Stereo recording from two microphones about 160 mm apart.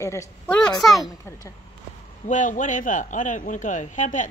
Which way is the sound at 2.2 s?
50° left (ahead or behind).